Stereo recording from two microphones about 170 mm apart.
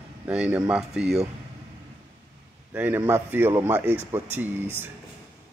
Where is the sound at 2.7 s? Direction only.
10° right (ahead or behind).